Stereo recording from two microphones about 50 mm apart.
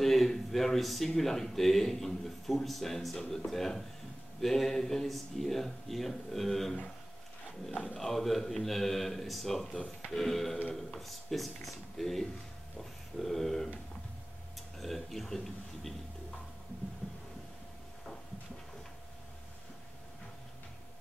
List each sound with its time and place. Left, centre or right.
0.0 s speech: centre
7.7 s speech: centre
8.0 s speech: centre
12.7 s a sound: centre
14.8 s speech: centre